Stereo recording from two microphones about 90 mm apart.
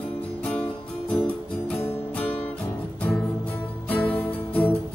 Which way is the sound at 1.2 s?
15° left (ahead or behind).